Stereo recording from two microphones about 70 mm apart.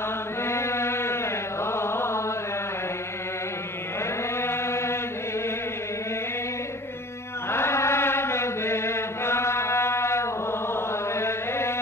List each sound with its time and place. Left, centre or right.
0.4 s chant: left
4.4 s chant: left
7.5 s chant: left